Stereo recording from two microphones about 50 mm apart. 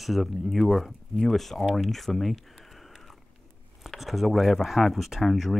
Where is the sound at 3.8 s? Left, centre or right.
Centre.